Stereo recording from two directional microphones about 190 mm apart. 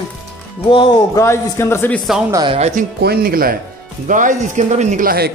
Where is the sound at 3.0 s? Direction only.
55° right (ahead or behind).